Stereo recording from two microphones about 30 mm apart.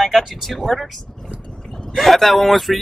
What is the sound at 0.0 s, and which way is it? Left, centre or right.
Speech, centre.